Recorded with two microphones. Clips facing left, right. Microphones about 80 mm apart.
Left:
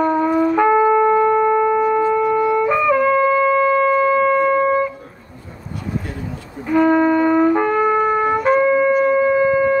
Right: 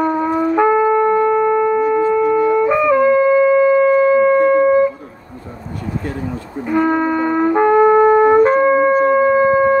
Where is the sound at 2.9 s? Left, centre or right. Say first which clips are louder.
Right 4 dB; centre.